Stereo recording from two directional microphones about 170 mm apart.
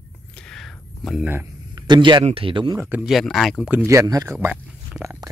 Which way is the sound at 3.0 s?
Centre (ahead or behind).